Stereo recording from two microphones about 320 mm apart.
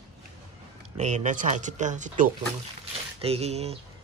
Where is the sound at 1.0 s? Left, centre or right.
Right.